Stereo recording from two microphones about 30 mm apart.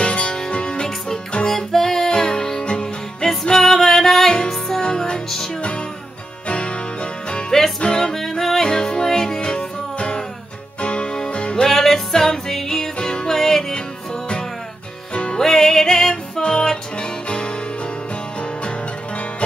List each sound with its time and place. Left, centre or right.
0.0 s music: left
0.5 s music: left
0.8 s music: left
3.5 s music: centre
4.8 s music: left
6.4 s music: left
8.1 s music: centre
8.6 s music: left
9.6 s music: left
11.6 s music: centre
15.3 s music: centre